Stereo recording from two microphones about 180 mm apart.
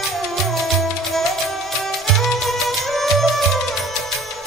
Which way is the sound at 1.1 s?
Centre (ahead or behind).